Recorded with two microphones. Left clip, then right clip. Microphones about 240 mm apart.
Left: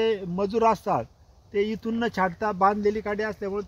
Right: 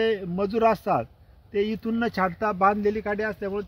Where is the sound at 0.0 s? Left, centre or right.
Left.